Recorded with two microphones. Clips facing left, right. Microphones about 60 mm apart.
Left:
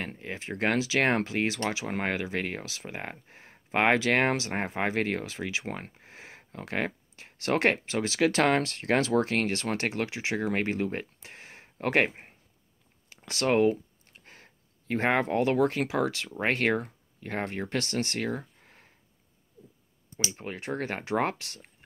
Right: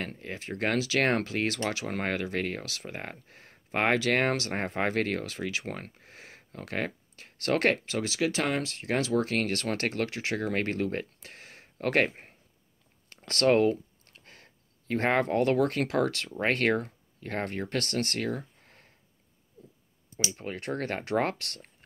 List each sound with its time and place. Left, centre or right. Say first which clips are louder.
0.0 s speech: even; left
13.1 s speech: right 2 dB; centre
20.3 s speech: even; left